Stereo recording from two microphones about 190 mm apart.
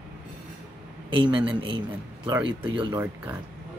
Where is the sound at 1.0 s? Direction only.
25° right (ahead or behind).